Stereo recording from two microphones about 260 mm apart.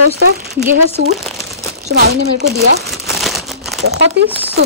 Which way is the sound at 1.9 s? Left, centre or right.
Right.